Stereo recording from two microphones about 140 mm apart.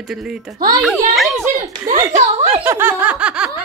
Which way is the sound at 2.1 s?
50° right (ahead or behind).